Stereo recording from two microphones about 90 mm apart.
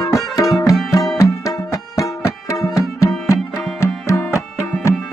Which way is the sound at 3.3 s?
35° left (ahead or behind).